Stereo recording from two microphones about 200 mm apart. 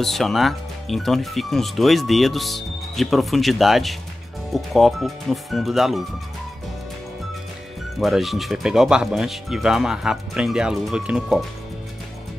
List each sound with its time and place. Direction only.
0.0 s speech: centre (ahead or behind)
8.0 s speech: centre (ahead or behind)